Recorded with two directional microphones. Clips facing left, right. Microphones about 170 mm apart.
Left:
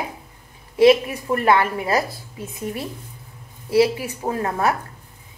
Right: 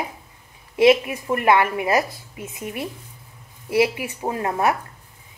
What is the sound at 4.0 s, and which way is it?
Speech, 20° right (ahead or behind).